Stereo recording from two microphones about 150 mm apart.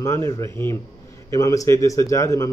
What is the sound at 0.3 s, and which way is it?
Speech, 20° left (ahead or behind).